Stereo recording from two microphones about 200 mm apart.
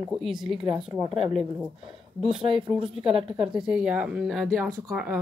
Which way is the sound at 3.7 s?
5° right (ahead or behind).